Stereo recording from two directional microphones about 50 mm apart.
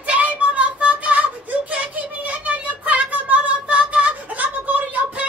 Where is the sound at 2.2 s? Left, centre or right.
Right.